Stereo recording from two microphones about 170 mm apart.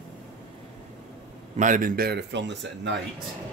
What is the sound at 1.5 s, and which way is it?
Speech, 50° right (ahead or behind).